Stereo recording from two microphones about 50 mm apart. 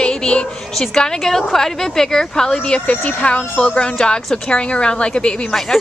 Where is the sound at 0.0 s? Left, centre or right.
Centre.